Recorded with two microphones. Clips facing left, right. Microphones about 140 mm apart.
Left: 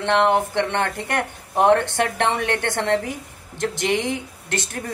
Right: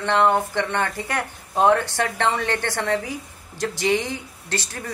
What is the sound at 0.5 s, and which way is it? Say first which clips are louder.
Speech: left 2 dB; 65° left (ahead or behind).